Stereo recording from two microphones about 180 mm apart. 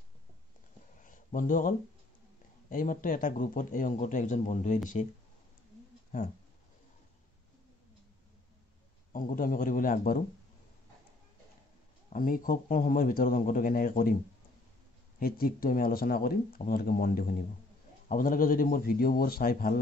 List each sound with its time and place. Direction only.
1.0 s a sound: 50° left (ahead or behind)
2.7 s speech: 50° left (ahead or behind)
6.1 s speech: 50° left (ahead or behind)
9.1 s speech: 50° left (ahead or behind)
12.1 s speech: 50° left (ahead or behind)
15.1 s speech: 55° left (ahead or behind)